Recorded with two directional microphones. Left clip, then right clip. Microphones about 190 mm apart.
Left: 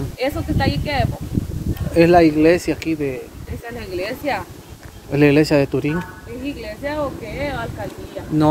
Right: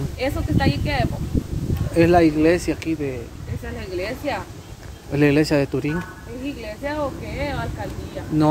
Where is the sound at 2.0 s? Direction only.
15° left (ahead or behind).